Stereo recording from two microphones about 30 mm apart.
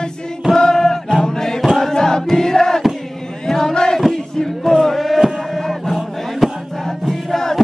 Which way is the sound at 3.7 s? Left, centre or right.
Left.